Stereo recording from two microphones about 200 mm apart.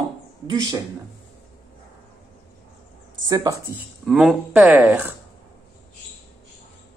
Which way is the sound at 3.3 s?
20° right (ahead or behind).